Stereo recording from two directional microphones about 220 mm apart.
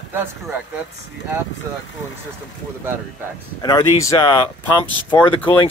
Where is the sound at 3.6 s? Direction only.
15° left (ahead or behind).